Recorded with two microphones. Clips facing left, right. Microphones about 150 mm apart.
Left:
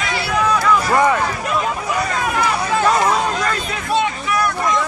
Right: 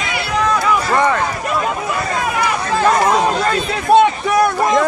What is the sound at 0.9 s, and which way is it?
Run, 10° left (ahead or behind).